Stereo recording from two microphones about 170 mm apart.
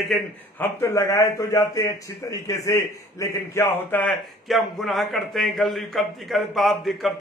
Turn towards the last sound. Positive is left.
turn(degrees=0)  # may be behind; listen again after turning